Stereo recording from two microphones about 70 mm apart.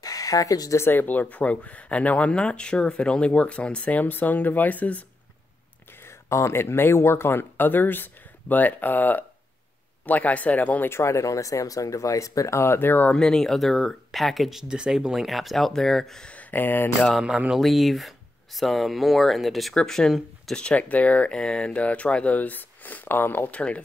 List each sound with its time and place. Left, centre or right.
0.0 s a sound: left
0.7 s speech: left
6.0 s speech: left
10.9 s speech: left
13.1 s speech: centre; by 16.9 s left
17.2 s speech: centre
17.6 s speech: centre
19.7 s speech: centre
20.5 s speech: centre